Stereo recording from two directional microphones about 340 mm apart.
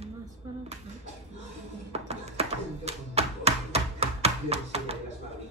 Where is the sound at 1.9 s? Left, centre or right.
Centre.